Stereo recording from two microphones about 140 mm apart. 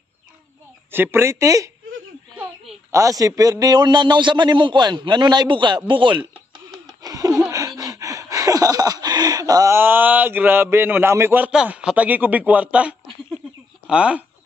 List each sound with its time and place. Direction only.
0.9 s speech: 15° right (ahead or behind)
2.9 s a man's voice: 25° right (ahead or behind)
7.0 s a sound: 25° right (ahead or behind); by 12.9 s 10° right (ahead or behind)
13.8 s speech: 10° right (ahead or behind)